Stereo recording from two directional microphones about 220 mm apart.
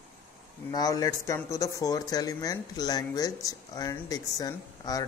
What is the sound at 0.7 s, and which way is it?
Speech, 15° left (ahead or behind).